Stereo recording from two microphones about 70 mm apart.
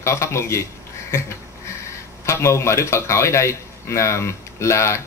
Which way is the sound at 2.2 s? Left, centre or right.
Left.